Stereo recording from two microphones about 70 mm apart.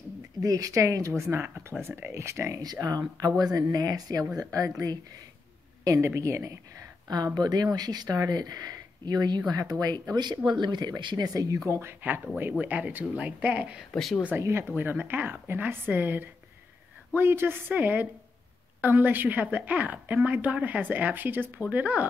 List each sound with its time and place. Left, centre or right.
0.4 s a woman's voice: right
2.6 s speech: right
5.9 s speech: right
7.3 s speech: right
9.5 s speech: right
10.1 s speech: right
11.8 s speech: right
13.9 s speech: centre
14.4 s a woman's voice: right